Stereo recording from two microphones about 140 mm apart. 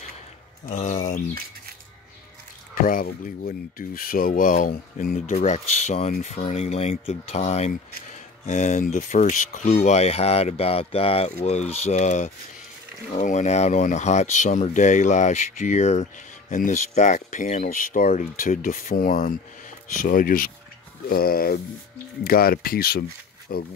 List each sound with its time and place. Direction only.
0.7 s speech: 60° left (ahead or behind)
2.7 s speech: 85° left
5.1 s speech: 55° left (ahead or behind); by 19.3 s 90° left
19.9 s speech: 75° left (ahead or behind); by 23.6 s 90° left